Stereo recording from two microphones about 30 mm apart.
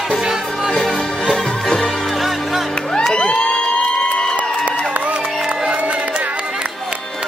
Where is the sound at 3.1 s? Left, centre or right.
Left.